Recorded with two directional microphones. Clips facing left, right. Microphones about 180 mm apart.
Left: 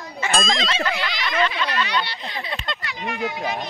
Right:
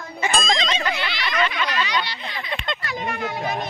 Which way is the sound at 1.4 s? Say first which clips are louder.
Left 1 dB; 35° left (ahead or behind).